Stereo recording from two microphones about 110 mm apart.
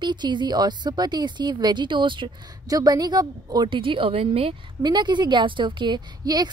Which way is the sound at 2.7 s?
35° right (ahead or behind).